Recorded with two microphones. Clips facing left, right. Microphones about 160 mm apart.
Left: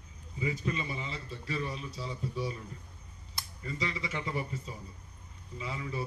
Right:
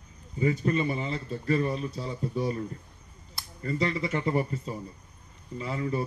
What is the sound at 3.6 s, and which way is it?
A man's voice, 50° right (ahead or behind).